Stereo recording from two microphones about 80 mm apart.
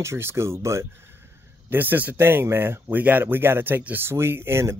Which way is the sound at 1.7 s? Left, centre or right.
Right.